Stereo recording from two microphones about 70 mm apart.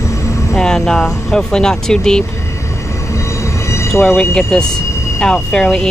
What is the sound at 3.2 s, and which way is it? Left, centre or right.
Train, left.